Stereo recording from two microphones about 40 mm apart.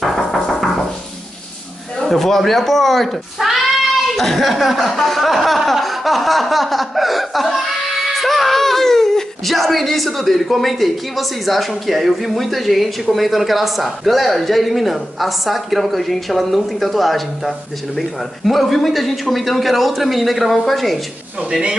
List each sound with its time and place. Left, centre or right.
0.0 s music: centre
2.0 s speech: centre
21.4 s speech: centre